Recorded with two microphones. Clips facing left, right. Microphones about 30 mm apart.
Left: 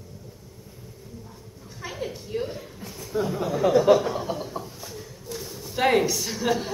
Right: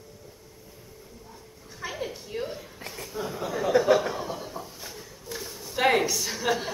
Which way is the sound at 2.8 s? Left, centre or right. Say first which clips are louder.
Even; right.